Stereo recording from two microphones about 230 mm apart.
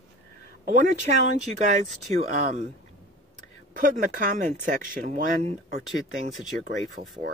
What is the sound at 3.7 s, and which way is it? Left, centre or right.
Speech, right.